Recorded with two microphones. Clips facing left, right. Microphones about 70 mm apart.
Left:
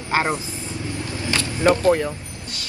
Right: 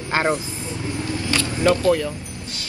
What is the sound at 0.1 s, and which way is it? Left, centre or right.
Speech, left.